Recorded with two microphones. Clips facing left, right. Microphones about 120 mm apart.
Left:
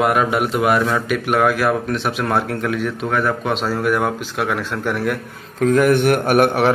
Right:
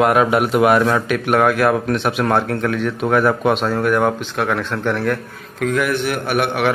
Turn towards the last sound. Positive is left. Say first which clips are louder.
# left 4 dB
turn(degrees=40)  # may be behind; listen again after turning